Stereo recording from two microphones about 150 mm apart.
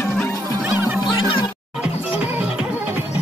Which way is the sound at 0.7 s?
15° right (ahead or behind).